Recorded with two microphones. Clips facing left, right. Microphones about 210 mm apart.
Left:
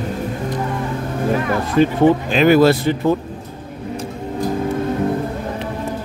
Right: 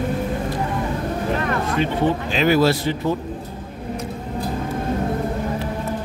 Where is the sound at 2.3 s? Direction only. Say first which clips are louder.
Left 2 dB; 55° left (ahead or behind).